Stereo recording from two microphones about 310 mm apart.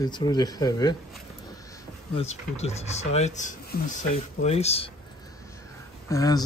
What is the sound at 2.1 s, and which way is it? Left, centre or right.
Speech, left.